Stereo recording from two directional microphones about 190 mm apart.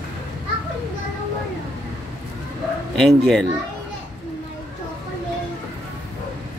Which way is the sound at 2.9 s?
Centre (ahead or behind).